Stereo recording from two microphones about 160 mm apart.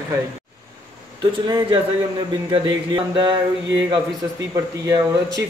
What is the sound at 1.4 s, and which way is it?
Speech, 30° right (ahead or behind).